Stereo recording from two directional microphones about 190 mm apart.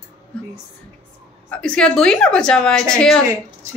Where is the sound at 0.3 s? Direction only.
5° left (ahead or behind).